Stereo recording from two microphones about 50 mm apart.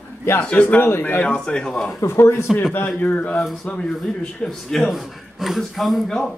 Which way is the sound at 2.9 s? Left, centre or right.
Left.